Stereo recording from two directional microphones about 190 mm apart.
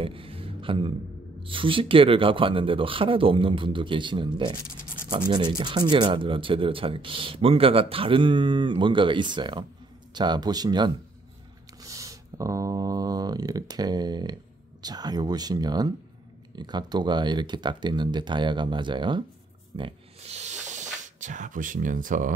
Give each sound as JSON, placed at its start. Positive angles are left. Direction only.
{"t": 0.0, "sound": "beatboxing", "side_deg": -30}
{"t": 1.4, "sound": "speech", "side_deg": -25}
{"t": 5.6, "sound": "speech", "side_deg": -25}
{"t": 11.8, "sound": "a sound", "side_deg": -15}
{"t": 14.8, "sound": "speech", "side_deg": -20}
{"t": 19.8, "sound": "snake", "side_deg": -35}